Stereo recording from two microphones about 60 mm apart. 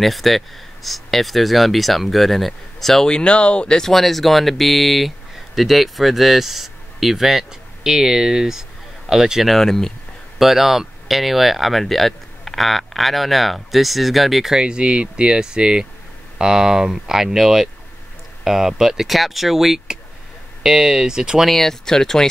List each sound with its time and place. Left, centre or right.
0.0 s speech: centre
3.1 s speech: centre
3.9 s speech: centre
10.4 s speech: centre
21.5 s speech: centre